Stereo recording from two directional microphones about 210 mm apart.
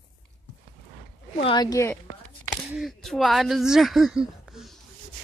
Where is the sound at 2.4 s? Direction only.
Centre (ahead or behind).